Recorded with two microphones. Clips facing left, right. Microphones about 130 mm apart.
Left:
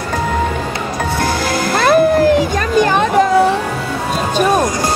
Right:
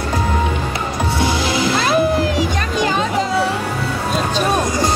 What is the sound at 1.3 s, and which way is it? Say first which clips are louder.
Music: left 1 dB; 50° left (ahead or behind).